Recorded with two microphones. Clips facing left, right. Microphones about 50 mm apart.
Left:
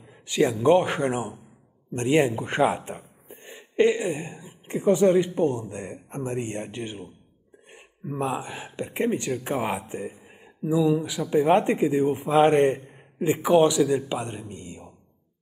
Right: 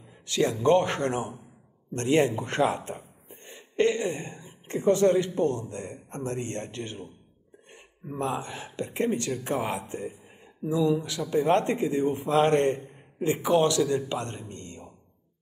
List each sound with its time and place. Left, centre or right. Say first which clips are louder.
0.3 s speech: left 3 dB; centre